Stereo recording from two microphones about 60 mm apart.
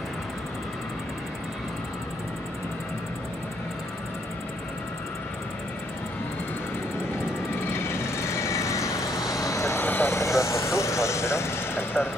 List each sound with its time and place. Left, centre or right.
7.7 s vehicle: left
9.8 s vehicle: left
10.0 s vehicle: left